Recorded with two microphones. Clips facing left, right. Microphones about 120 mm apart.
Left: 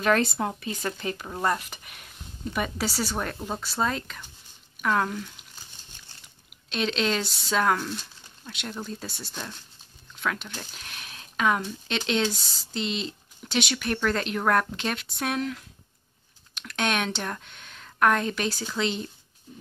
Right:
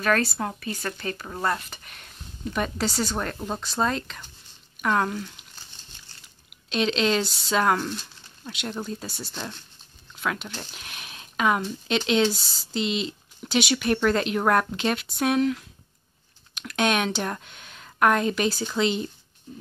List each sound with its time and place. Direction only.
0.0 s speech: 20° left (ahead or behind); by 5.2 s 5° right (ahead or behind)
6.7 s speech: centre (ahead or behind)